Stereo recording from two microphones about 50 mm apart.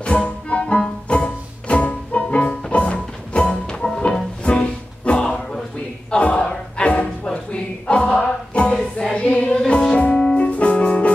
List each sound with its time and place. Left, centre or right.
0.0 s music: left
3.8 s music: centre